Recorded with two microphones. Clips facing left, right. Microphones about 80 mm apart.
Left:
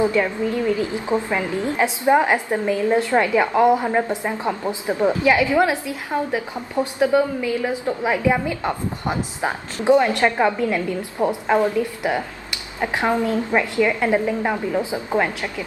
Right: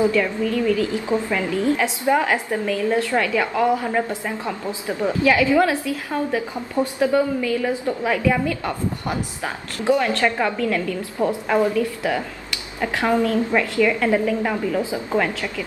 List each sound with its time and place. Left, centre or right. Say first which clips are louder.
0.0 s a woman's voice: even; left